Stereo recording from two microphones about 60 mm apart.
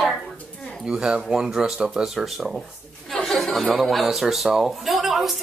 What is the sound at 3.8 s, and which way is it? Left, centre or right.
Speech, centre.